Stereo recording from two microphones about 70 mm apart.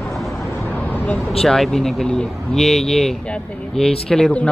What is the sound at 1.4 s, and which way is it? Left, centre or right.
Speech, centre.